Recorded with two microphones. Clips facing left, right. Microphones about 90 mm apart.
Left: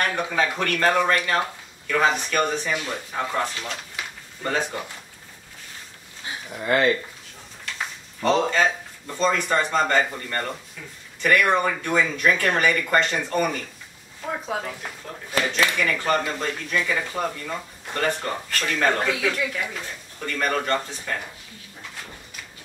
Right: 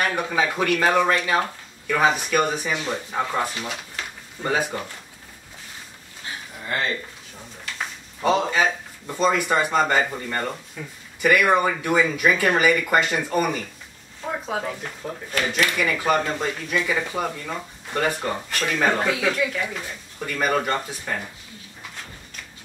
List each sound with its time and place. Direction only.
0.0 s speech: 10° right (ahead or behind)
7.6 s speech: 5° right (ahead or behind)
15.0 s speech: 20° right (ahead or behind)
15.8 s speech: 5° right (ahead or behind)